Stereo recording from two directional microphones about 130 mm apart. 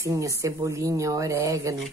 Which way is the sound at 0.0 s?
25° right (ahead or behind).